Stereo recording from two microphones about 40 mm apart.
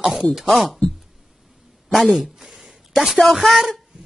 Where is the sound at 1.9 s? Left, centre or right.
Centre.